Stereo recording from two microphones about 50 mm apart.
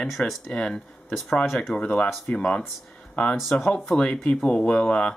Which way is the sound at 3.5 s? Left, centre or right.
Left.